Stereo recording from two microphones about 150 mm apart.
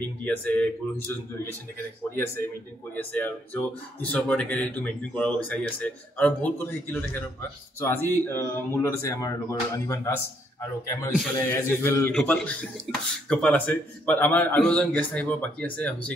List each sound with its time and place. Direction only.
0.2 s speech: 10° left (ahead or behind)
2.9 s speech: 10° left (ahead or behind)
11.3 s speech: 15° left (ahead or behind)